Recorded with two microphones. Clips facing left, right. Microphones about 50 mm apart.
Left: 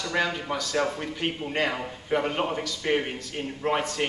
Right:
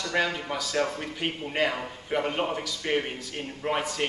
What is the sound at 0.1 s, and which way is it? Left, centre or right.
Speech, centre.